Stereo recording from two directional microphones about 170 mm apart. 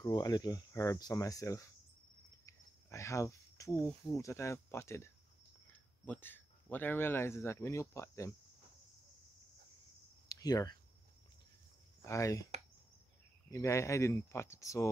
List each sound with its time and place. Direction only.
0.0 s speech: 20° left (ahead or behind)
10.2 s speech: 20° left (ahead or behind)
12.0 s speech: 20° left (ahead or behind)
13.5 s speech: 15° left (ahead or behind)